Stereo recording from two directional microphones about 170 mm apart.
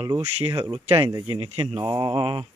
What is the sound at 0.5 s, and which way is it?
Speech, 25° right (ahead or behind).